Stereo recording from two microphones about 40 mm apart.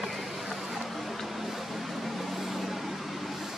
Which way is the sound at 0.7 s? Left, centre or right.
Centre.